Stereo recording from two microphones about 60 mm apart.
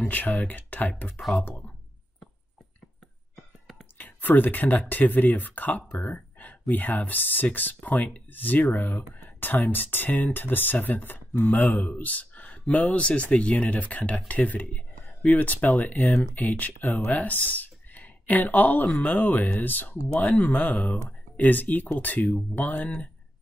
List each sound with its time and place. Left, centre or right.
0.0 s speech: left
4.0 s speech: left